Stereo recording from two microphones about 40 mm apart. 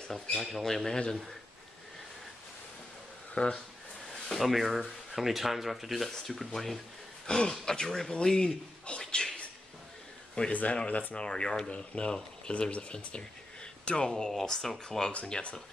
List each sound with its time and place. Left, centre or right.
0.4 s speech: centre
3.3 s speech: left
4.3 s speech: centre
7.2 s speech: centre
9.0 s a sound: centre
10.5 s speech: left
11.1 s speech: left
11.7 s speech: left